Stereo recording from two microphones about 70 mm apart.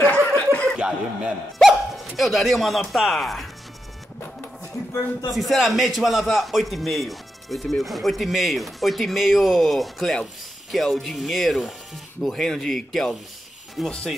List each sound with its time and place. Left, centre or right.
0.0 s snicker: left
0.7 s speech: centre
1.6 s hiccup: centre
2.1 s a man's voice: centre
5.3 s a man's voice: centre